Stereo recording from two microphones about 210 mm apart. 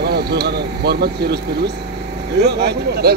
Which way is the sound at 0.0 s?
50° right (ahead or behind).